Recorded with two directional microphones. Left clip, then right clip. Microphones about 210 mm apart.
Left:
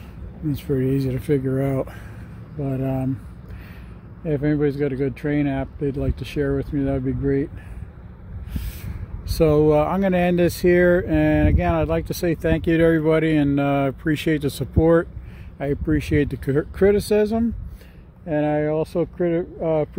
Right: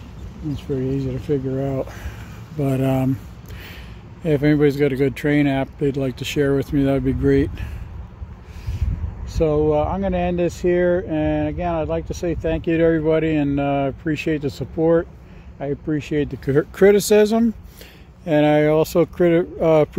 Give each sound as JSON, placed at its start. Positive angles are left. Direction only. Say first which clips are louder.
{"t": 0.6, "sound": "speech", "louder": "left 1 dB", "side_deg": 25}
{"t": 2.6, "sound": "speech", "louder": "right 5 dB", "side_deg": -15}
{"t": 4.2, "sound": "speech", "louder": "right 5 dB", "side_deg": -10}
{"t": 9.3, "sound": "speech", "louder": "left 1 dB", "side_deg": 35}
{"t": 16.4, "sound": "speech", "louder": "right 6 dB", "side_deg": -5}